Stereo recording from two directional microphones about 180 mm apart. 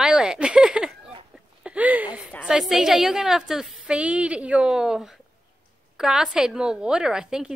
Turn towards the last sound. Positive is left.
turn(degrees=-5)  # may be behind; listen again after turning